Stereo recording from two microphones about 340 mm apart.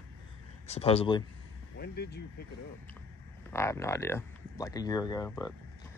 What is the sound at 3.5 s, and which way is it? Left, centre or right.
Speech, centre.